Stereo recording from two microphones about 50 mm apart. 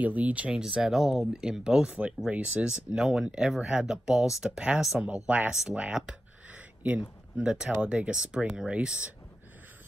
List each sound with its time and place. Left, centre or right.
0.0 s speech: right
0.6 s speech: centre
6.5 s a sound: right
7.8 s speech: right